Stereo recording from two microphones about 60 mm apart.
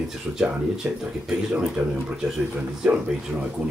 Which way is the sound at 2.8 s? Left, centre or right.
Centre.